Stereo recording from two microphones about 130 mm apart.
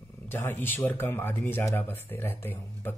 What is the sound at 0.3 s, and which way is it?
Speech, 15° left (ahead or behind).